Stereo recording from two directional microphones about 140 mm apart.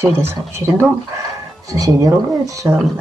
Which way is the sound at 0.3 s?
20° right (ahead or behind).